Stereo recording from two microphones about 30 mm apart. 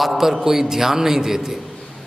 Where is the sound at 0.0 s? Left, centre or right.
Centre.